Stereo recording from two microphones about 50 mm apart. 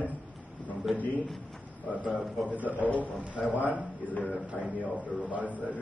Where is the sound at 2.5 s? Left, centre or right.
Right.